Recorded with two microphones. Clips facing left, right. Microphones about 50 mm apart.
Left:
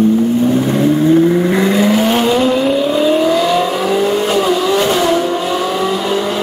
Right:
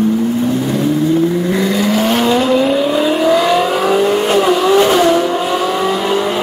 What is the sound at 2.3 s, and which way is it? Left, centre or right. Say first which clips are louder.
Vehicle: even; centre.